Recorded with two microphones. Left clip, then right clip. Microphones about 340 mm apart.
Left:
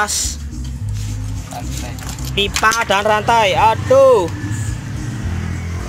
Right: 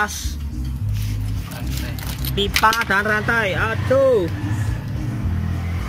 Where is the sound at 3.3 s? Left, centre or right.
Centre.